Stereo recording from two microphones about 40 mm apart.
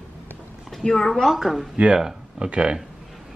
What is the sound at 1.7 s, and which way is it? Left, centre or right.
Speech, right.